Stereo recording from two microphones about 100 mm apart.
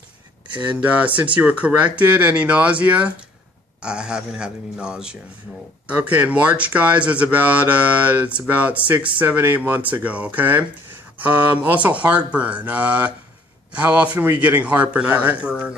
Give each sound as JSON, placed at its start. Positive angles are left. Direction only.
{"t": 0.7, "sound": "speech", "side_deg": -15}